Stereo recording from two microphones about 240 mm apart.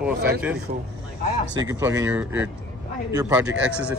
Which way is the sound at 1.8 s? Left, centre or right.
Centre.